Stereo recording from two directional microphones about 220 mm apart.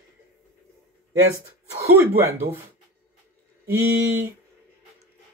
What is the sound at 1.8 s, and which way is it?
Speech, 10° right (ahead or behind).